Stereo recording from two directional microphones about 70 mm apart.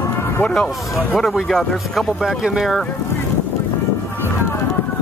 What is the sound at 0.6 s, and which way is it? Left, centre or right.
Speech, centre.